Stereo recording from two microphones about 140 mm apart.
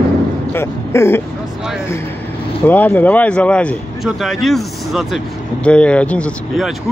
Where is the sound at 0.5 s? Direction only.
15° left (ahead or behind).